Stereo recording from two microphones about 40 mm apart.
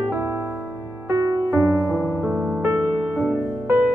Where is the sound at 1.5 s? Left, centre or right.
Right.